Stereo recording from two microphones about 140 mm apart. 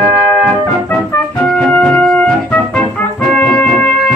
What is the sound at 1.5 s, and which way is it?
Music, 10° left (ahead or behind).